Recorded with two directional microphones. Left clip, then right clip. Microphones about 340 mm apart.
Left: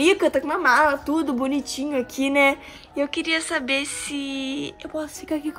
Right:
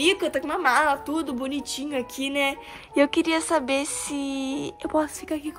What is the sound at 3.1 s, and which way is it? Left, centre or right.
Speech, centre.